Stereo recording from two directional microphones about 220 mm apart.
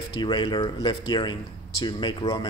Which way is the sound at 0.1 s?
20° left (ahead or behind).